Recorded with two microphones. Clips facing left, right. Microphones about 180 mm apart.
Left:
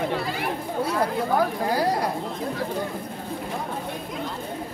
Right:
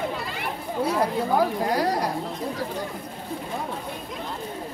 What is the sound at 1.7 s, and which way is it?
Speech, 30° left (ahead or behind).